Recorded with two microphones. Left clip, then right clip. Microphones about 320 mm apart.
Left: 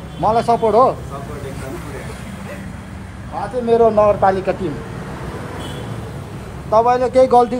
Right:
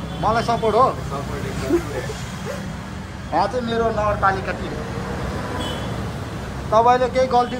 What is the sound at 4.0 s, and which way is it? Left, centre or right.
Speech, centre.